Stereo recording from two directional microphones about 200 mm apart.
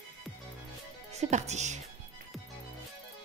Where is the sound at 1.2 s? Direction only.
35° right (ahead or behind).